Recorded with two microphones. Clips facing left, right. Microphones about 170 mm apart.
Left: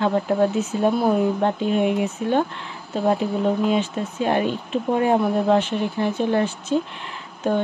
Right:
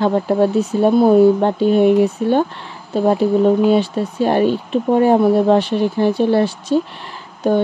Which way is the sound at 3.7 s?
35° right (ahead or behind).